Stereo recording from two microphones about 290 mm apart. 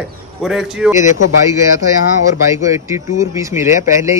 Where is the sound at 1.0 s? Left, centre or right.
Left.